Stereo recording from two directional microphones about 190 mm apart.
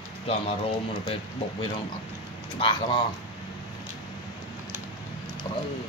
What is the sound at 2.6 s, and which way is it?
Speech, 25° left (ahead or behind).